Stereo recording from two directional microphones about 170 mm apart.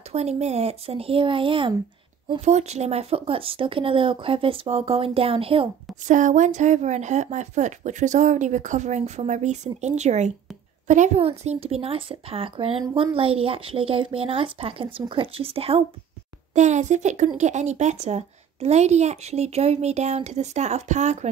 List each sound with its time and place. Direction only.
0.1 s speech: 40° right (ahead or behind)
2.4 s speech: 40° right (ahead or behind)
6.0 s speech: 45° right (ahead or behind)